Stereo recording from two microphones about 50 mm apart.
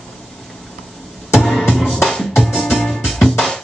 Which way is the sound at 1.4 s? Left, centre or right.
Centre.